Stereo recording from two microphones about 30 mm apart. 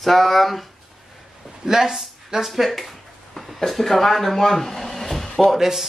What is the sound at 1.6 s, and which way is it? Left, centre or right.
Speech, centre.